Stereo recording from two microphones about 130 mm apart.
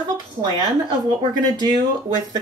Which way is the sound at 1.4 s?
30° right (ahead or behind).